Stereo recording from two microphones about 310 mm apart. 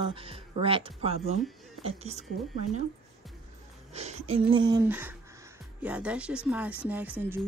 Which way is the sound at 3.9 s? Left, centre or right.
Right.